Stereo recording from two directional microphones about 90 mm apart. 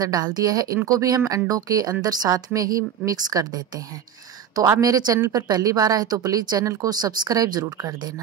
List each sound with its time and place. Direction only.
0.0 s a woman's voice: 50° right (ahead or behind)